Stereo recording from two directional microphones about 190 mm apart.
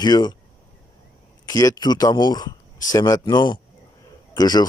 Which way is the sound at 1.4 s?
20° left (ahead or behind).